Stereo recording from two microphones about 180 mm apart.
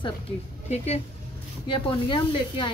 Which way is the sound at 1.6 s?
30° left (ahead or behind).